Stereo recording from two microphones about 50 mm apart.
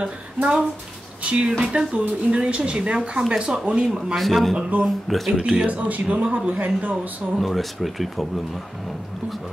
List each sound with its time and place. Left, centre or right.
0.0 s speech: centre
4.1 s speech: centre
5.7 s speech: right
7.3 s speech: centre